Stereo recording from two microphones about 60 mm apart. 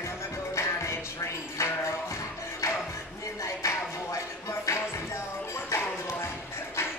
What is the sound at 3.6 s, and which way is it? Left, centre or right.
Music, left.